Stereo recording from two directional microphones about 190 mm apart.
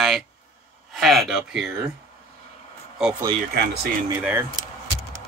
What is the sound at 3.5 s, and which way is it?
Speech, 55° right (ahead or behind).